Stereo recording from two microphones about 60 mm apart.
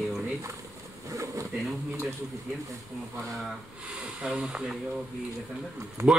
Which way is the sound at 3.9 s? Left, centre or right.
Centre.